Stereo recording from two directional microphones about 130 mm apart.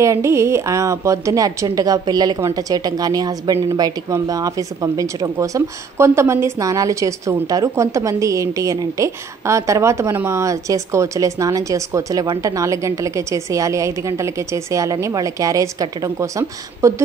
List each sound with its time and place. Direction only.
0.0 s a woman's voice: 20° right (ahead or behind)